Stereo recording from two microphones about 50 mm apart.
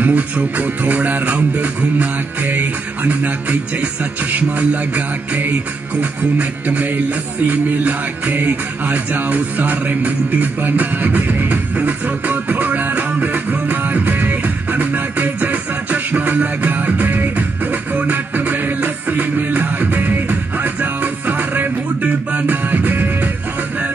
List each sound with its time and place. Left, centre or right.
0.0 s music: right